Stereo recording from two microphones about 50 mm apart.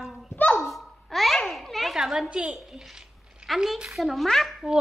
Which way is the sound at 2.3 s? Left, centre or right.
Right.